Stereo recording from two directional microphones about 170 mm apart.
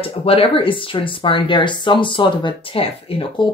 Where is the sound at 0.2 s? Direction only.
35° left (ahead or behind).